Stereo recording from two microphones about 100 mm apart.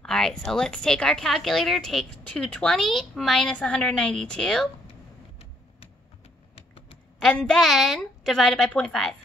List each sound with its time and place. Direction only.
0.0 s a woman's voice: 5° left (ahead or behind)
3.5 s a woman's voice: 10° left (ahead or behind)
7.2 s a woman's voice: 5° left (ahead or behind)